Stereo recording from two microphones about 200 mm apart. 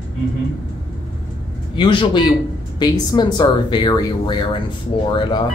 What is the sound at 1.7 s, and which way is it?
Speech, 25° left (ahead or behind).